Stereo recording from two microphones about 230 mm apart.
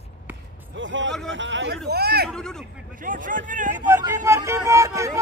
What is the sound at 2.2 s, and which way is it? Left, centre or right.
Speech, centre.